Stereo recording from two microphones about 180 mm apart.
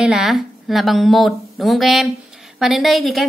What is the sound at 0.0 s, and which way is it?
A woman's voice, centre (ahead or behind).